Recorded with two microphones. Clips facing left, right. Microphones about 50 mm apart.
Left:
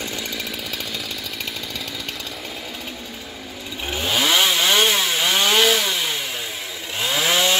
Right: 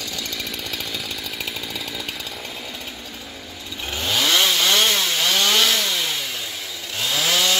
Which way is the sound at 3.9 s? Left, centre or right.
Centre.